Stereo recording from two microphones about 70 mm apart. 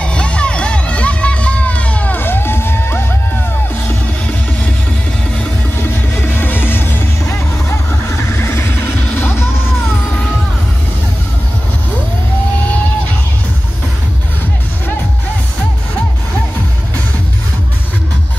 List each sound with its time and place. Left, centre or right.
0.0 s music: centre; by 3.1 s left
5.8 s music: left
8.4 s music: left